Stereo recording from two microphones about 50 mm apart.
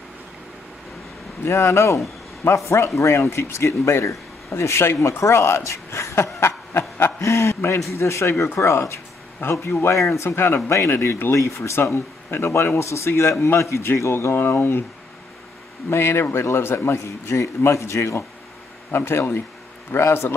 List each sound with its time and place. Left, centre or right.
1.4 s speech: left
5.0 s speech: left
7.2 s speech: left
7.9 s speech: left
9.4 s speech: left
9.8 s speech: left
10.2 s speech: left
11.3 s speech: left
15.9 s speech: left
16.9 s speech: left